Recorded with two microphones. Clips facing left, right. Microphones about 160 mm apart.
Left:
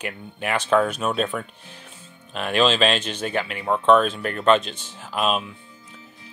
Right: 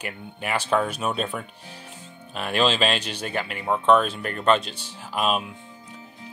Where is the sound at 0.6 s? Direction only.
10° right (ahead or behind).